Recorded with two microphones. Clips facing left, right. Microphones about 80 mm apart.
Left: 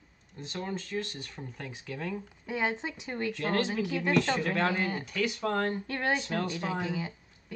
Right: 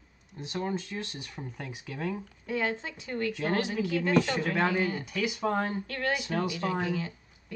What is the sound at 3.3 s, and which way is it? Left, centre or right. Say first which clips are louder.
Speech: left 1 dB; centre.